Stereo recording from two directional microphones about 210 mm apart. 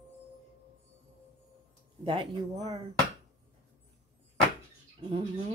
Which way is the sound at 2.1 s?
25° right (ahead or behind).